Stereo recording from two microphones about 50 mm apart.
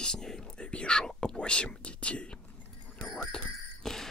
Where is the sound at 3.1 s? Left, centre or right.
Centre.